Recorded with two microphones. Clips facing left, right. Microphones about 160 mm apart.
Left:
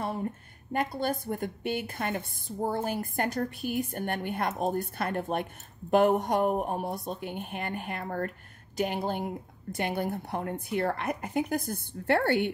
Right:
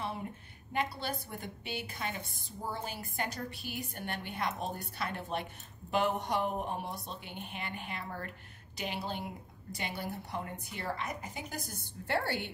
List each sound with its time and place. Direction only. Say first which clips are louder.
0.7 s a woman's voice: left 6 dB; 50° left (ahead or behind)